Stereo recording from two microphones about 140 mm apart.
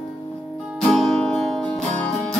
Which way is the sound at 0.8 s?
Centre (ahead or behind).